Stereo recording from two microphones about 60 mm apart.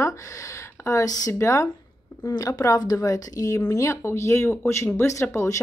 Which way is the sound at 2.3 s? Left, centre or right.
Left.